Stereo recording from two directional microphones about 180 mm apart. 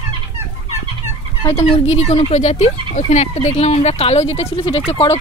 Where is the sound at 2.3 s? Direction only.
35° left (ahead or behind).